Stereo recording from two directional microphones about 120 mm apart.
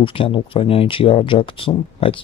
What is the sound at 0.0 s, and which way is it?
Speech, 45° left (ahead or behind).